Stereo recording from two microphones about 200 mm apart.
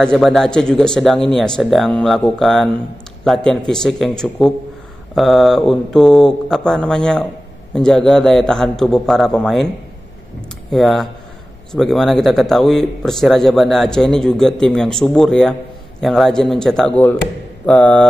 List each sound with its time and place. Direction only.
0.0 s a man's voice: centre (ahead or behind)
10.7 s a man's voice: centre (ahead or behind)